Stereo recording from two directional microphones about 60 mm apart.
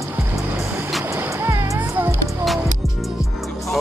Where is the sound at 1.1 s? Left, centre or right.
Right.